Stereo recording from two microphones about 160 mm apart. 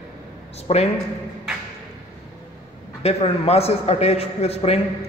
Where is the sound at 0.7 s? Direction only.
40° left (ahead or behind).